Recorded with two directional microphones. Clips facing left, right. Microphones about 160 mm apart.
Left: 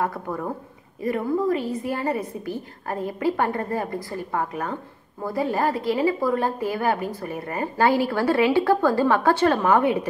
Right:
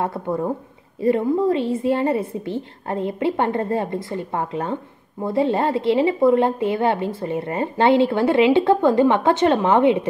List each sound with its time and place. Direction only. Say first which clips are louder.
0.0 s a woman's voice: right 4 dB; 25° right (ahead or behind)